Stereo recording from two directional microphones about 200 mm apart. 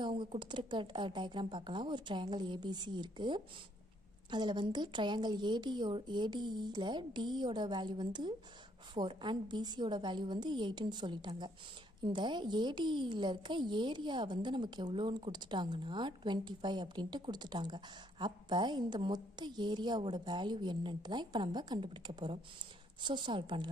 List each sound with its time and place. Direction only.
0.0 s a woman's voice: 25° right (ahead or behind)